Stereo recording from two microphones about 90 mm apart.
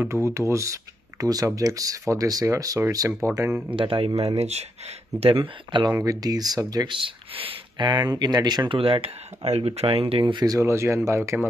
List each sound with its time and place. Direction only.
0.1 s speech: 30° right (ahead or behind)
3.7 s speech: 90° right
5.2 s speech: 75° right (ahead or behind); by 5.9 s 60° right (ahead or behind)
6.0 s speech: 45° right (ahead or behind)
6.9 s speech: 75° right (ahead or behind); by 8.7 s 50° right (ahead or behind)
8.7 s speech: 85° right
10.3 s speech: 40° right (ahead or behind)